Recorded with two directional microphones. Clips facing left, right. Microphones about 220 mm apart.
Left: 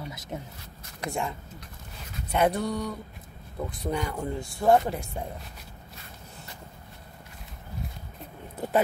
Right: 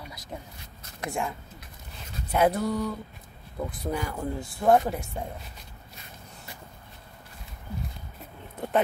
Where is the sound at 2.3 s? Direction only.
5° right (ahead or behind).